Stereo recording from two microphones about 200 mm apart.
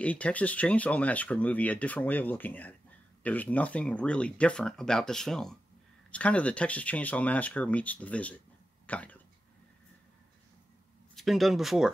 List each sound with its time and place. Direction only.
0.0 s speech: 5° left (ahead or behind)
11.1 s speech: centre (ahead or behind)